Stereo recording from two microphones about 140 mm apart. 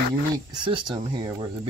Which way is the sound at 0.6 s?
35° right (ahead or behind).